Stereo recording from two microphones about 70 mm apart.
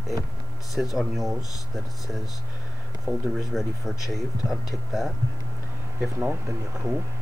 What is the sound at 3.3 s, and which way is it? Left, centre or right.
Speech, centre.